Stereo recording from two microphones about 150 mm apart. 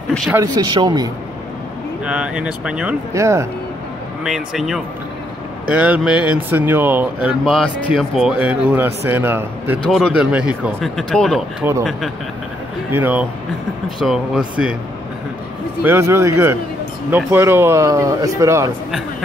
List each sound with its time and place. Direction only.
0.7 s speech: 25° right (ahead or behind)
2.0 s speech: 5° right (ahead or behind)
3.1 s speech: 20° right (ahead or behind)
4.2 s speech: 5° right (ahead or behind)
7.4 s speech: centre (ahead or behind)
9.8 s speech: 5° right (ahead or behind)
11.6 s speech: 15° right (ahead or behind)
12.9 s speech: 10° right (ahead or behind)
13.8 s speech: centre (ahead or behind)
15.8 s speech: 15° right (ahead or behind)